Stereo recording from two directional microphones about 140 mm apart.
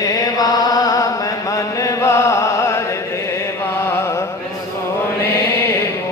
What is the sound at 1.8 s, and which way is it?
Music, 20° left (ahead or behind).